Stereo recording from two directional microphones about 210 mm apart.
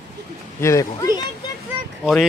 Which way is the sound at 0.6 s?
15° left (ahead or behind).